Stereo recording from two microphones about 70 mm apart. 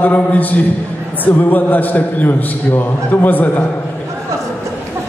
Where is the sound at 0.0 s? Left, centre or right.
Left.